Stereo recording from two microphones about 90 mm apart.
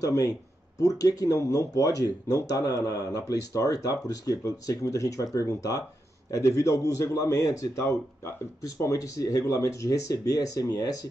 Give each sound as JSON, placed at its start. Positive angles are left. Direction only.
{"t": 0.0, "sound": "a man's voice", "side_deg": 40}